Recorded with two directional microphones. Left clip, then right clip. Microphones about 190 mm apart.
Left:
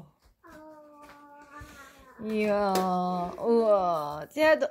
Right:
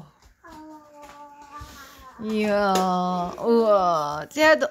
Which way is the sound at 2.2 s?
5° right (ahead or behind).